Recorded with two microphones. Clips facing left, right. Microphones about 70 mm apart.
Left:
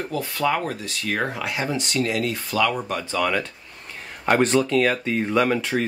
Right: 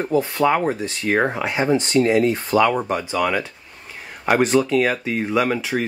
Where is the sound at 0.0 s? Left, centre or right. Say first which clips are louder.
Right 6 dB; right.